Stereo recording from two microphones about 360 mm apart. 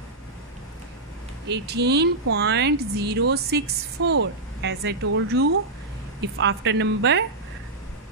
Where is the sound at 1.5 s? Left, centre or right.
Right.